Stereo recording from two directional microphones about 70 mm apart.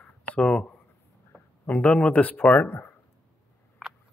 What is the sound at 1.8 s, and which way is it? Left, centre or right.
Speech, centre.